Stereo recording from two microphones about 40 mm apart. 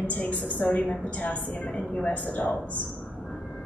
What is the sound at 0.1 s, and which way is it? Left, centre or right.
A woman's voice, left.